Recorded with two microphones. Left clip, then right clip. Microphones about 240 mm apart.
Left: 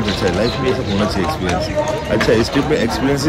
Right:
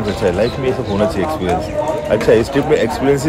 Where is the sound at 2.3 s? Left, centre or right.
Centre.